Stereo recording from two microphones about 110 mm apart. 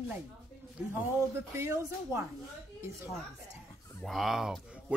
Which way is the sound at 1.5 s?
25° right (ahead or behind).